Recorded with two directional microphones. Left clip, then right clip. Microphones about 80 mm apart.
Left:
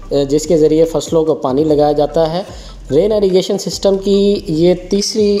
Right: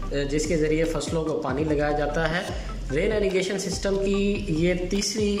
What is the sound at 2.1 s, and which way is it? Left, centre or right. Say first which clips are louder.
Speech: left 12 dB; left.